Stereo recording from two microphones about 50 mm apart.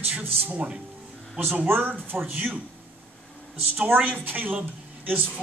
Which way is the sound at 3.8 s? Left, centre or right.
Right.